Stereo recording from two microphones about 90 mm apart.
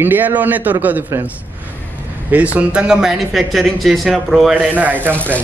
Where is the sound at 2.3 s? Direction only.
15° right (ahead or behind).